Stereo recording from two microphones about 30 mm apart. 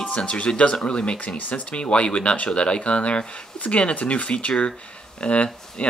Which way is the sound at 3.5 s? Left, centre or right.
Left.